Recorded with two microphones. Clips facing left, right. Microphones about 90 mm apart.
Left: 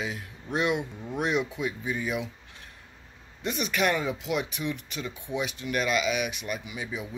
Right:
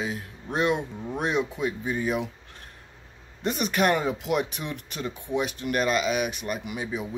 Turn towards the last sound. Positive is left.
turn(degrees=-40)  # may be behind; listen again after turning